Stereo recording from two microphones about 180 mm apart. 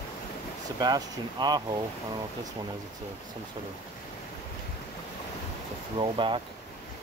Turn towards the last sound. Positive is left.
turn(degrees=-30)  # may be behind; listen again after turning